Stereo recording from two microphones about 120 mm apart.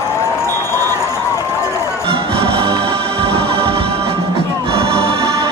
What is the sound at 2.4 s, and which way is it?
Music, 50° right (ahead or behind).